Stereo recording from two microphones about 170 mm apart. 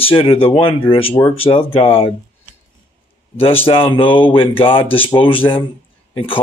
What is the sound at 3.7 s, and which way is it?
A man's voice, 30° left (ahead or behind).